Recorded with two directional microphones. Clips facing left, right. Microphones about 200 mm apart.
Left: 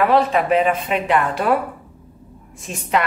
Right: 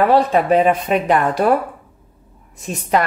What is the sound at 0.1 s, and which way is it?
Speech, 40° right (ahead or behind).